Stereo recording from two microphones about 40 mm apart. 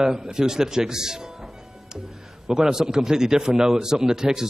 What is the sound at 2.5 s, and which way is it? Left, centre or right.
Speech, centre.